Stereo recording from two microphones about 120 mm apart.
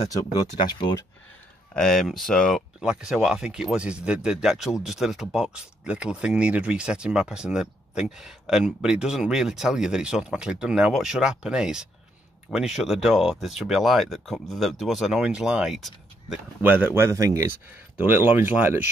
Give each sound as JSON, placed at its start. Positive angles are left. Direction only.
{"t": 0.7, "sound": "speech", "side_deg": 35}
{"t": 1.8, "sound": "speech", "side_deg": 5}
{"t": 16.6, "sound": "speech", "side_deg": -15}